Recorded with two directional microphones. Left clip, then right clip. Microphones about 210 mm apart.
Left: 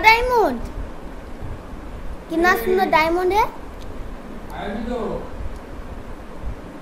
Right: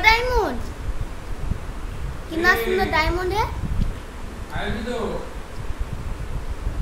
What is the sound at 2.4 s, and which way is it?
A woman's voice, centre (ahead or behind).